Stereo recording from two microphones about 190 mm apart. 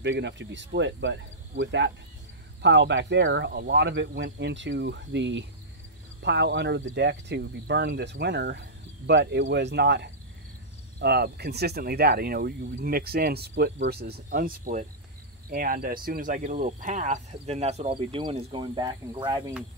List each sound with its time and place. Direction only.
0.0 s speech: 70° right (ahead or behind); by 19.4 s 25° right (ahead or behind)